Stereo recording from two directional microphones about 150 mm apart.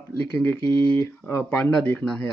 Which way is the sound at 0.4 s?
15° left (ahead or behind).